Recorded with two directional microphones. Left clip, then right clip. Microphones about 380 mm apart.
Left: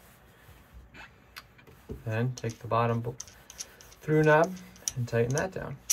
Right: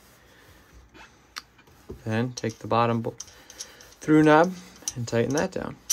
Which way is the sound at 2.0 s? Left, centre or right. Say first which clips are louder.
Right 5 dB; centre.